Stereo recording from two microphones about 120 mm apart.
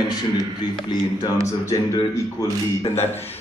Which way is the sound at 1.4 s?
25° left (ahead or behind).